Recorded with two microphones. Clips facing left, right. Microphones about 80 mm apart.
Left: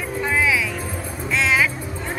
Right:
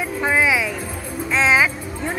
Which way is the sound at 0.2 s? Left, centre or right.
Right.